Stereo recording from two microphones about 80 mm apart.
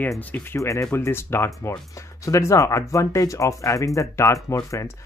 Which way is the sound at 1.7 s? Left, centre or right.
Left.